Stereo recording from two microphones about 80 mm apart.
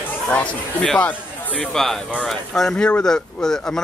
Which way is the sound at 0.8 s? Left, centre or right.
Centre.